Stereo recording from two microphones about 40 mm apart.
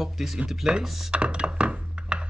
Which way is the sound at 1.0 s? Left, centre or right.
Right.